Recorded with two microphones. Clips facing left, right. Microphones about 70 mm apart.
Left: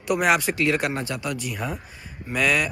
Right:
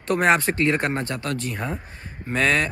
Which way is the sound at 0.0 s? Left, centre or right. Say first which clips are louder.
Right 2 dB; right.